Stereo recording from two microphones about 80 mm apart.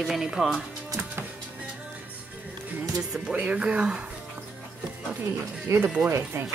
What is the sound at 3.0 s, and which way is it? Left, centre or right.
Speech, centre.